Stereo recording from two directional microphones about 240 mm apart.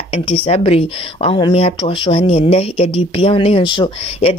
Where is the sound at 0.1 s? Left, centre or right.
Left.